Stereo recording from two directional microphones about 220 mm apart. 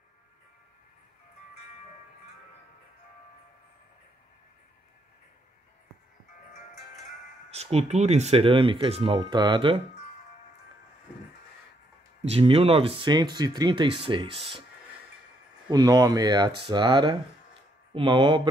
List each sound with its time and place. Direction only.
7.5 s speech: 30° right (ahead or behind)
12.3 s speech: 25° right (ahead or behind)
15.7 s speech: 15° right (ahead or behind)